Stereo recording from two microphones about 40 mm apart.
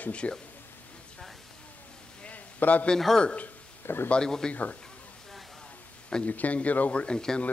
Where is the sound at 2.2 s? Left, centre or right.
Left.